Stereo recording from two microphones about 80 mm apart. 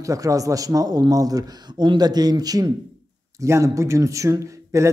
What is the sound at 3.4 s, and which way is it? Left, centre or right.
Speech, right.